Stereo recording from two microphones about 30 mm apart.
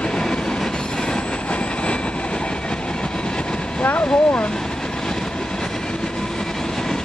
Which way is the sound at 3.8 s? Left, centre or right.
Left.